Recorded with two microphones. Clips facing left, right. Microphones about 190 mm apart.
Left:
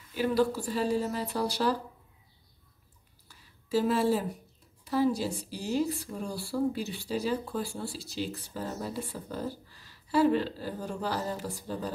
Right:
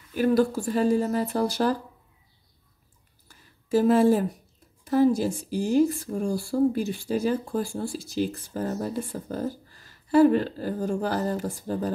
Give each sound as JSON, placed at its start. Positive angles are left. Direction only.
{"t": 0.1, "sound": "speech", "side_deg": -50}
{"t": 3.3, "sound": "a sound", "side_deg": -50}
{"t": 4.8, "sound": "speech", "side_deg": -50}